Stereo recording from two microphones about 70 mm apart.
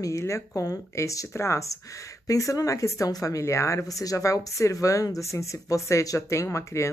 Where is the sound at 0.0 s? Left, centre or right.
Left.